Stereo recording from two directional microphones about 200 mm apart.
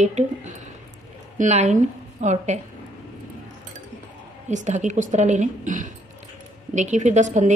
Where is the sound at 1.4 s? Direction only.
35° right (ahead or behind).